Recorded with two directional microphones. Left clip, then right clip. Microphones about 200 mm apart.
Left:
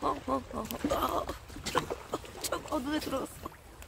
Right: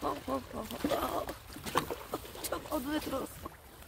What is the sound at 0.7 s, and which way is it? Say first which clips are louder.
Speech: left 2 dB; 20° left (ahead or behind).